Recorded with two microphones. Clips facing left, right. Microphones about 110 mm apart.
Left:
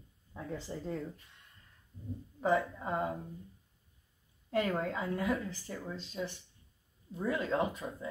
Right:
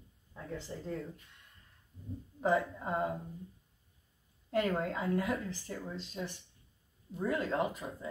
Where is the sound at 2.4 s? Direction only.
Centre (ahead or behind).